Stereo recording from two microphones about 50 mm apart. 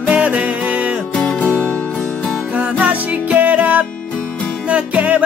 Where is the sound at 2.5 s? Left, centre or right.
Right.